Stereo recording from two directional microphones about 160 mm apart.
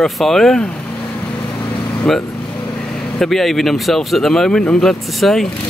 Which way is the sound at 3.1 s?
Centre (ahead or behind).